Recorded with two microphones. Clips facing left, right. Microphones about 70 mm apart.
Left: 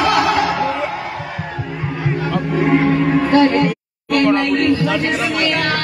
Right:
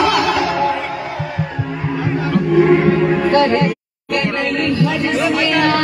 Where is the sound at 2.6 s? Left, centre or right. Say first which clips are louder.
Right 2 dB; centre.